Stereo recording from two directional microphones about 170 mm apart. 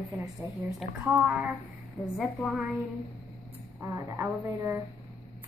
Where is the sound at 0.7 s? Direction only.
5° right (ahead or behind).